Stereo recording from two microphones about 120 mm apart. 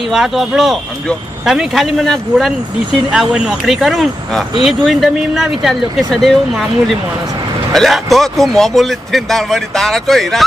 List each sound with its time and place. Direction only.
0.1 s speech: 5° right (ahead or behind)
7.7 s speech: centre (ahead or behind)